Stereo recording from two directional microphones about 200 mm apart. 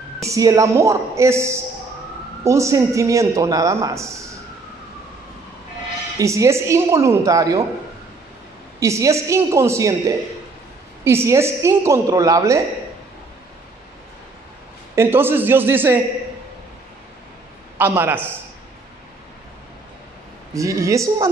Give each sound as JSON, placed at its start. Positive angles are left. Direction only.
{"t": 0.2, "sound": "a man's voice", "side_deg": -15}
{"t": 6.1, "sound": "a man's voice", "side_deg": -15}
{"t": 8.7, "sound": "a man's voice", "side_deg": -15}
{"t": 15.0, "sound": "a man's voice", "side_deg": -10}
{"t": 17.7, "sound": "a man's voice", "side_deg": -10}
{"t": 20.5, "sound": "a man's voice", "side_deg": -15}